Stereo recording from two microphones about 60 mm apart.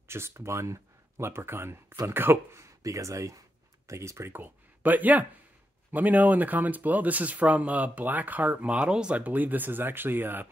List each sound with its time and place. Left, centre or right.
0.1 s speech: right
2.6 s speech: right
4.3 s speech: right; by 9.2 s centre
9.2 s speech: right